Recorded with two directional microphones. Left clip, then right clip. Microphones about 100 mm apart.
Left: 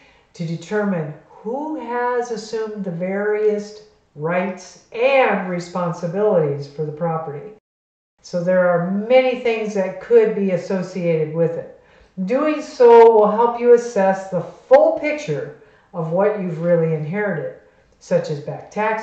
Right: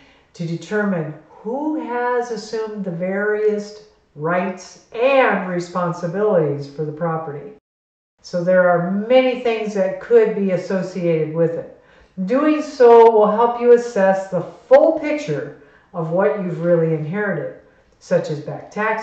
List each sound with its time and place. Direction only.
0.6 s speech: 10° left (ahead or behind)